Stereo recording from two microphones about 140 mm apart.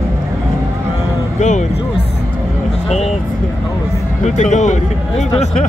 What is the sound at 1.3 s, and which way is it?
Music, 60° left (ahead or behind).